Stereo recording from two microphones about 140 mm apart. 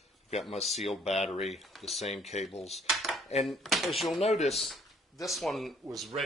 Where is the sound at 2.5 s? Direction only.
50° left (ahead or behind).